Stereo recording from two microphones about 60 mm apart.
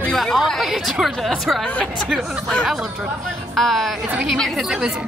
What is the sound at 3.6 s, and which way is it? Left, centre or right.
Speech, centre.